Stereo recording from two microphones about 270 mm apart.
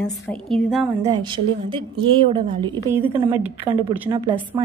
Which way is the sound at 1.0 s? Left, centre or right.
Centre.